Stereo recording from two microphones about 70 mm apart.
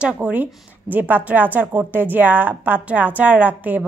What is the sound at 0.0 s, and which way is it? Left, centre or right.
A woman's voice, right.